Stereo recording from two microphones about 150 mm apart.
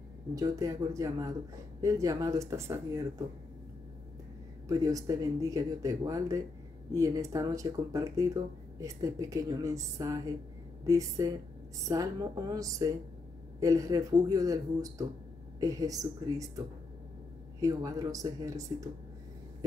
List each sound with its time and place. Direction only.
0.3 s speech: 25° right (ahead or behind)
4.6 s speech: 25° right (ahead or behind)